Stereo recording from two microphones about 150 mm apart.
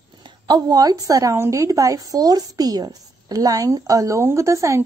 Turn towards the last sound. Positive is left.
turn(degrees=-20)  # may be behind; listen again after turning